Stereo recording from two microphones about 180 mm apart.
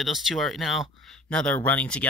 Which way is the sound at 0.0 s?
Centre (ahead or behind).